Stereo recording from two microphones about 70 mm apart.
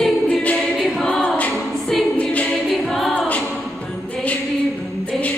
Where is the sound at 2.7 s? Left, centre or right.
Centre.